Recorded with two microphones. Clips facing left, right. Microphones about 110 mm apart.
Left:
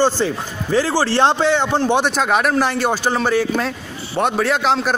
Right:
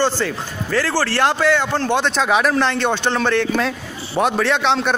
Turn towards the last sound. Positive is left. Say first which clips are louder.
# even
turn(degrees=0)  # may be behind; listen again after turning